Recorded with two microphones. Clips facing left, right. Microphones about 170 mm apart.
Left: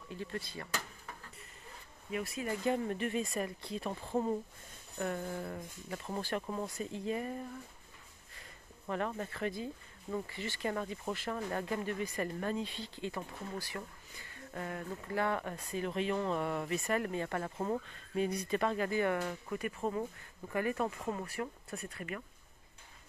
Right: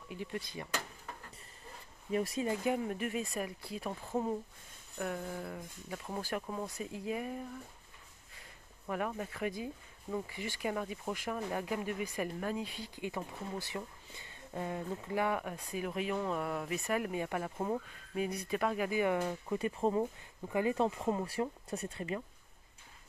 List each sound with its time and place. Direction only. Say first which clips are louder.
0.1 s speech: even; 15° right (ahead or behind)
2.0 s speech: right 5 dB; 35° right (ahead or behind)
2.4 s speech: right 1 dB; 20° right (ahead or behind)
2.7 s speech: left 1 dB; 5° right (ahead or behind)
8.8 s speech: even; 5° right (ahead or behind)
19.6 s speech: right 5 dB; 30° right (ahead or behind)
20.4 s speech: right 3 dB; 20° right (ahead or behind)